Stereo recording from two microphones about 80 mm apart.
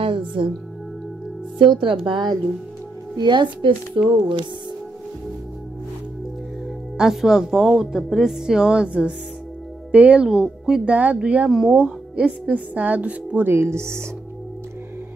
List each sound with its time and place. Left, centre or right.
0.0 s music: right
1.6 s speech: right
3.2 s a child's voice: right
7.0 s a woman's voice: centre
10.3 s speech: centre
10.9 s speech: centre
11.4 s a woman's voice: centre
11.7 s speech: centre; by 14.0 s right